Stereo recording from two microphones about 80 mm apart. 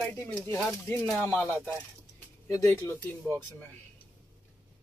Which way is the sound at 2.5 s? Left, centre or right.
Left.